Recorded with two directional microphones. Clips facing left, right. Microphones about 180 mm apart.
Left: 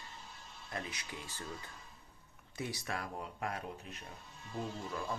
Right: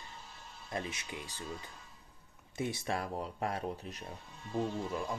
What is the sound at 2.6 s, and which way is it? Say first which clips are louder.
Speech: right 5 dB; 25° right (ahead or behind).